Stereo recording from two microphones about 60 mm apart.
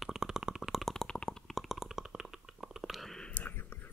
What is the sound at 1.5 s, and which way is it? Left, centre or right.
Stomach rumble, centre.